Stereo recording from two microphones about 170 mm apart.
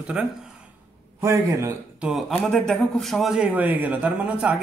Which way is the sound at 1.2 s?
15° right (ahead or behind).